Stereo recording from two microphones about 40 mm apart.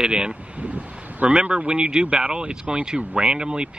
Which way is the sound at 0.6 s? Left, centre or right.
Right.